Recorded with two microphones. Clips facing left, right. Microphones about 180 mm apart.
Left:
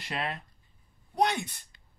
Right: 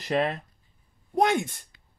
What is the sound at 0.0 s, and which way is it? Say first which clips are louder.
A woman's voice: right 9 dB; 40° right (ahead or behind).